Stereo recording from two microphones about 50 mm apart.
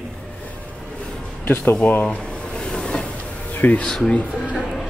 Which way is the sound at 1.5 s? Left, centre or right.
Left.